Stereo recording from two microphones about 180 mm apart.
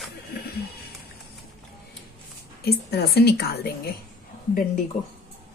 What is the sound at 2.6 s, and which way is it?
A woman's voice, 60° left (ahead or behind).